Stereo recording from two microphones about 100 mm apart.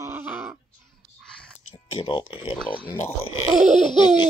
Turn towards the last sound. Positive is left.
turn(degrees=45)  # may be behind; listen again after turning